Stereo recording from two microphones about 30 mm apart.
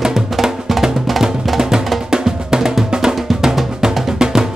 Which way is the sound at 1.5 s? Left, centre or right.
Centre.